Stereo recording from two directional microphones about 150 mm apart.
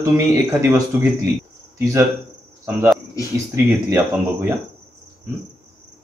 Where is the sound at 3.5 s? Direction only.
15° right (ahead or behind).